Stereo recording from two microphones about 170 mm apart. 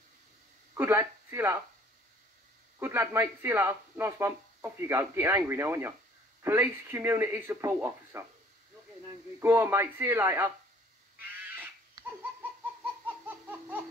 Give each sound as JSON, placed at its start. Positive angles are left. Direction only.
{"t": 0.7, "sound": "speech", "side_deg": -15}
{"t": 2.8, "sound": "speech", "side_deg": -15}
{"t": 9.4, "sound": "speech", "side_deg": -15}
{"t": 11.1, "sound": "a sound", "side_deg": -10}
{"t": 12.0, "sound": "laughter", "side_deg": -25}
{"t": 13.0, "sound": "laughter", "side_deg": -10}